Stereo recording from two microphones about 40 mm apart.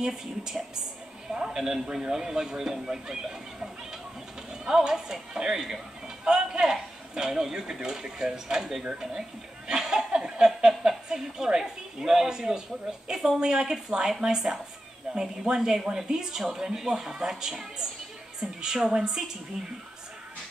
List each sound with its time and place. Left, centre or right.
0.0 s speech: centre
9.7 s chuckle: centre
10.2 s a sound: centre
10.8 s a woman's voice: centre
19.6 s speech: centre